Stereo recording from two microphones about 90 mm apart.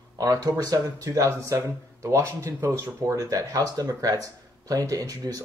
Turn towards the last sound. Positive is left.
turn(degrees=-45)  # may be behind; listen again after turning